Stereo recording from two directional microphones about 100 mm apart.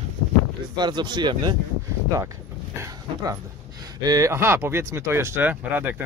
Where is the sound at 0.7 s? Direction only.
45° right (ahead or behind).